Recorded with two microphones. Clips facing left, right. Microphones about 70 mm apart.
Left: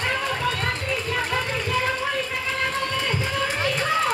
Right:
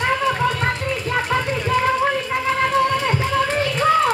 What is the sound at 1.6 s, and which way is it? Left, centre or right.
Run, right.